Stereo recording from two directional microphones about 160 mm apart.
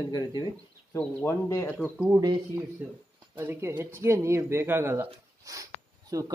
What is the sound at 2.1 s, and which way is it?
Speech, 25° right (ahead or behind).